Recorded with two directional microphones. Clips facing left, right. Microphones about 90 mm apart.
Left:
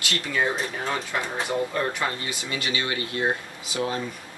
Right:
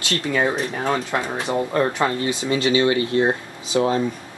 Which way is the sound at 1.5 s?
25° right (ahead or behind).